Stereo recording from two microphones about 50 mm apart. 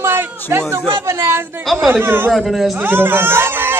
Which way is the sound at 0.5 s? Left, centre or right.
Right.